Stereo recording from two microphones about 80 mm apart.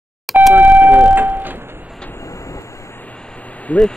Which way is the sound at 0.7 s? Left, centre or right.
Right.